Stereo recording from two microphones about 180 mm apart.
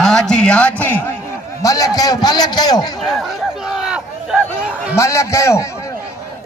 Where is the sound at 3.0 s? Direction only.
Centre (ahead or behind).